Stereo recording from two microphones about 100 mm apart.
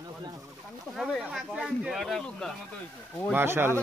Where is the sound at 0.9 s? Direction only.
Centre (ahead or behind).